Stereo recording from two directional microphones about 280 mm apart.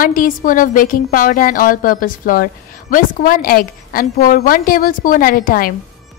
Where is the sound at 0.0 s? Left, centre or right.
Left.